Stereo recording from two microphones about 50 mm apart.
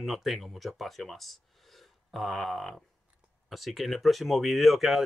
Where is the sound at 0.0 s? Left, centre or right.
Centre.